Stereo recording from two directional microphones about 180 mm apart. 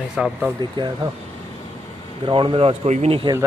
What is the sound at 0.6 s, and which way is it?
Speech, 25° right (ahead or behind).